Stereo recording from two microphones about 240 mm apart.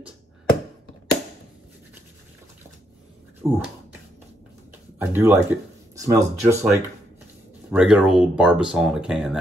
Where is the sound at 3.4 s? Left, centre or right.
Centre.